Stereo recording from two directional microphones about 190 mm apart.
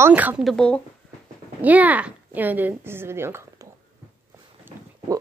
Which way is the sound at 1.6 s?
10° right (ahead or behind).